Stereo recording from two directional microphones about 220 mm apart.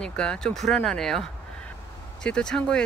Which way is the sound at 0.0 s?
5° left (ahead or behind).